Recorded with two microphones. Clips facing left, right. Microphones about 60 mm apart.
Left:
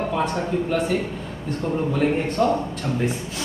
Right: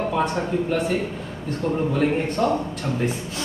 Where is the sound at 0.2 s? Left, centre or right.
Centre.